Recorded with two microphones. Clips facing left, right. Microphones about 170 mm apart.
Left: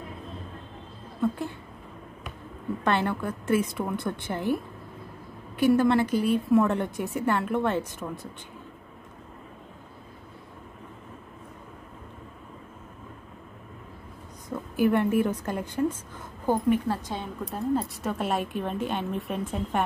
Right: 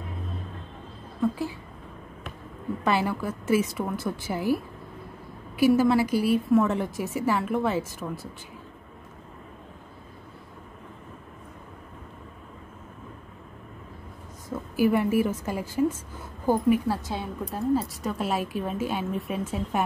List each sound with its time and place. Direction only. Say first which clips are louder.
1.2 s a woman's voice: right 1 dB; centre (ahead or behind)
2.8 s a woman's voice: right 1 dB; 5° right (ahead or behind)
5.6 s a woman's voice: right 1 dB; 5° right (ahead or behind)
14.5 s a woman's voice: right 1 dB; 5° right (ahead or behind)